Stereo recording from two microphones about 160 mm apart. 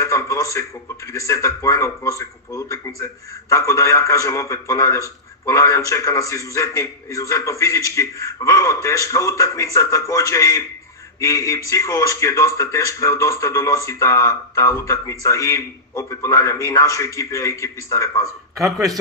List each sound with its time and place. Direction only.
0.0 s speech: 20° left (ahead or behind)